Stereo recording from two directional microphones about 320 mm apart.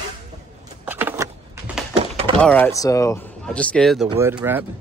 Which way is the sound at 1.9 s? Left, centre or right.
Centre.